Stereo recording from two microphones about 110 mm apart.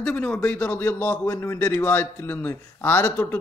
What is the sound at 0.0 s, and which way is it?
A man's voice, 10° left (ahead or behind).